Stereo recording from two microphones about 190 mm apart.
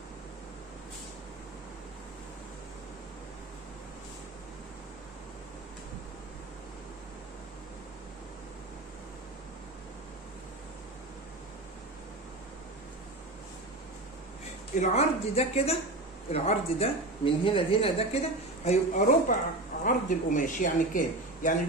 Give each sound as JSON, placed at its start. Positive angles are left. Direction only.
{"t": 14.8, "sound": "speech", "side_deg": 35}